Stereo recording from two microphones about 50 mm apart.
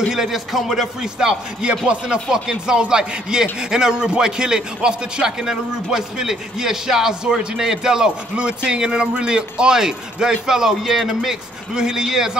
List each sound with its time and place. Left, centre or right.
0.1 s speech: centre
1.2 s a man's voice: centre